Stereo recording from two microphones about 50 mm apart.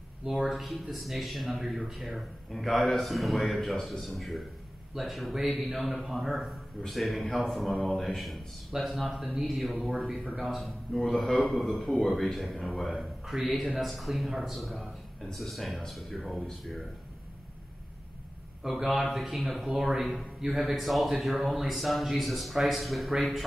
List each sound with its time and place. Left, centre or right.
0.2 s speech: centre
9.8 s a man's voice: centre
10.4 s a man's voice: centre
18.6 s speech: centre